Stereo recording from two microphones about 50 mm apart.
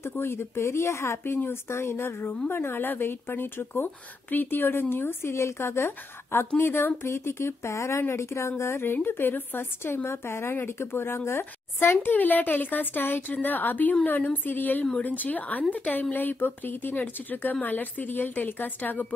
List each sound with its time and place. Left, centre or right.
0.2 s a woman's voice: left
1.2 s speech: left
5.3 s a woman's voice: left
7.0 s a woman's voice: left
12.1 s speech: left